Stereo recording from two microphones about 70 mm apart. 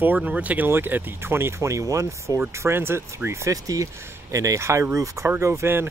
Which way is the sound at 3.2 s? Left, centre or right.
Right.